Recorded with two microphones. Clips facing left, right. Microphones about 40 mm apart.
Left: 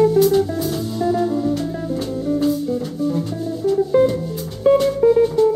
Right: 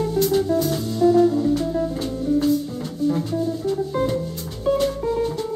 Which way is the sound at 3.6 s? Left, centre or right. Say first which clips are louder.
Left 7 dB; centre.